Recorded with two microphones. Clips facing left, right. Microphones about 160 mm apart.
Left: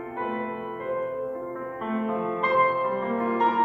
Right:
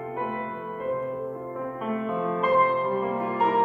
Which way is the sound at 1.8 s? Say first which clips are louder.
Left 1 dB; 5° right (ahead or behind).